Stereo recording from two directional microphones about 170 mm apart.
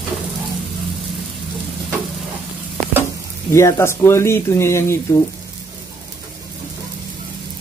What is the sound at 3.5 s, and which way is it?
Speech, 15° left (ahead or behind).